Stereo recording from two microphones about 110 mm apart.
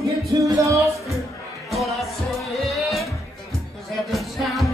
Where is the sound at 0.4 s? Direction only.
30° right (ahead or behind).